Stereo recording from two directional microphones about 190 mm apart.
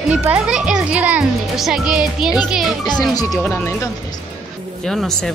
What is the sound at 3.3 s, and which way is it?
Speech, 10° left (ahead or behind).